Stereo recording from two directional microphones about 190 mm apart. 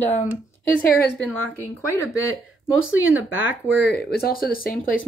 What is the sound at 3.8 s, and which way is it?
Speech, 55° left (ahead or behind).